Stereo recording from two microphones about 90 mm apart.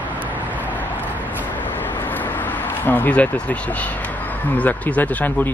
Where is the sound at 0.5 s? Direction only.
20° left (ahead or behind).